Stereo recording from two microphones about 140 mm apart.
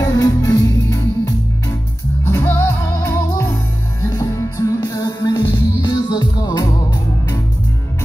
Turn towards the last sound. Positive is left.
turn(degrees=30)  # may be behind; listen again after turning